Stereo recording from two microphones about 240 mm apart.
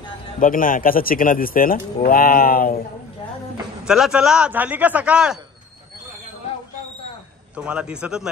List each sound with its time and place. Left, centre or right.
0.4 s speech: left
3.8 s speech: centre
7.5 s speech: centre